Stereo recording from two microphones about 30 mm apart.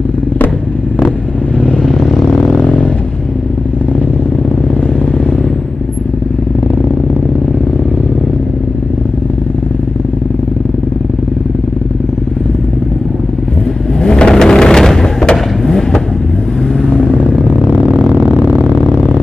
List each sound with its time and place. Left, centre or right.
14.0 s vehicle: left
14.3 s rain: left
14.9 s fireworks: centre